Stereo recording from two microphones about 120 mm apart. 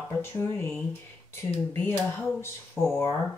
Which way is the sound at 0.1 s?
20° left (ahead or behind).